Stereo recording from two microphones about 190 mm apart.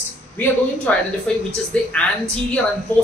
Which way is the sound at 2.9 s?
10° left (ahead or behind).